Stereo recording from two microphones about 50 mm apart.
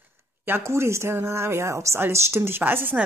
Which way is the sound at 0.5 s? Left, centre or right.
Right.